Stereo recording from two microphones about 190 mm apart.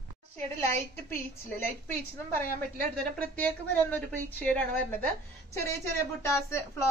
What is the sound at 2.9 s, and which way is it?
A woman's voice, 5° left (ahead or behind).